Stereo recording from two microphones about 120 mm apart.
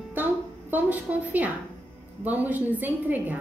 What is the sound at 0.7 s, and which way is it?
A woman's voice, 15° right (ahead or behind).